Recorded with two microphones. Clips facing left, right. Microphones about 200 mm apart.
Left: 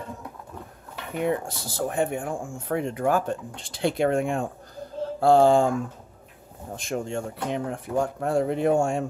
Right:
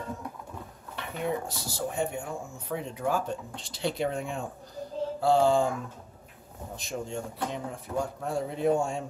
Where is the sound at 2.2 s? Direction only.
50° left (ahead or behind).